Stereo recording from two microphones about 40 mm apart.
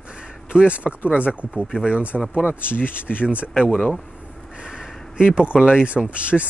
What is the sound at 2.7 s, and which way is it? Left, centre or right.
Speech, left.